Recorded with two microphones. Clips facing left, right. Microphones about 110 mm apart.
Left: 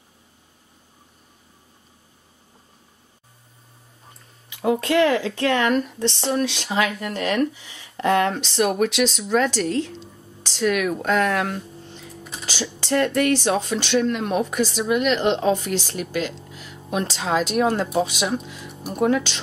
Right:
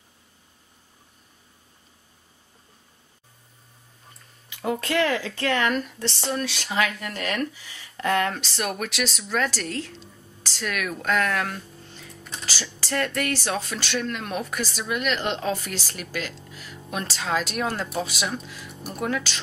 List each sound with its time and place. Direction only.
4.6 s speech: 10° left (ahead or behind)
5.3 s speech: 15° left (ahead or behind)
6.9 s speech: 5° left (ahead or behind)
8.9 s speech: 20° left (ahead or behind)
12.1 s a sound: 5° left (ahead or behind)
12.8 s speech: 15° left (ahead or behind)
15.0 s speech: 25° left (ahead or behind)
18.7 s music: centre (ahead or behind)
18.9 s speech: 20° left (ahead or behind)